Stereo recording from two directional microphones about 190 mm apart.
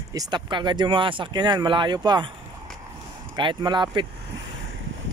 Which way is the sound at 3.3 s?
25° right (ahead or behind).